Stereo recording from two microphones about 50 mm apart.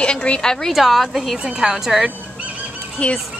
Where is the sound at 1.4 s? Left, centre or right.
Centre.